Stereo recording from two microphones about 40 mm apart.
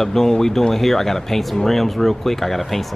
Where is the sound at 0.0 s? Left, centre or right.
Centre.